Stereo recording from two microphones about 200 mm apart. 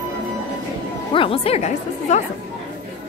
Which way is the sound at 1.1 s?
30° left (ahead or behind).